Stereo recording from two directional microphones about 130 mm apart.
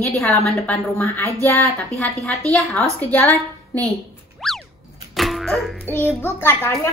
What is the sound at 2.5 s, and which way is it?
A child's voice, 5° left (ahead or behind).